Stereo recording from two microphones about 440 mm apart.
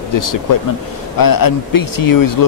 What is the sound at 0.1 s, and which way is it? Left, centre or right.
Speech, left.